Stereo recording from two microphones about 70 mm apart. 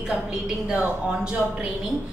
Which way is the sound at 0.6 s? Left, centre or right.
Centre.